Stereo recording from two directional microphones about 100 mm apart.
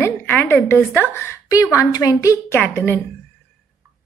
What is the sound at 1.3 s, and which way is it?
A woman's voice, 30° left (ahead or behind).